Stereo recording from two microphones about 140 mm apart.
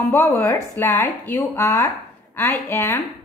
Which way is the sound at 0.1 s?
15° left (ahead or behind).